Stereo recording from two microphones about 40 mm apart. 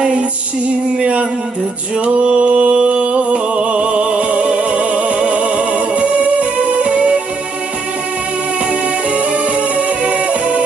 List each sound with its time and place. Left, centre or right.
2.0 s music: right
9.8 s music: right